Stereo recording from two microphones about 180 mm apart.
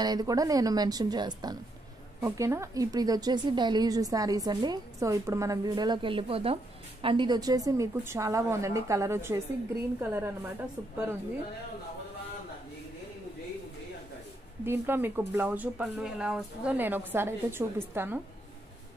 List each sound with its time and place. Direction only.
0.0 s a woman's voice: 20° right (ahead or behind)
14.6 s speech: 10° right (ahead or behind)